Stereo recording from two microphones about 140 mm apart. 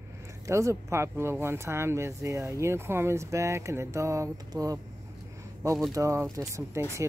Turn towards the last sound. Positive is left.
turn(degrees=-20)  # may be behind; listen again after turning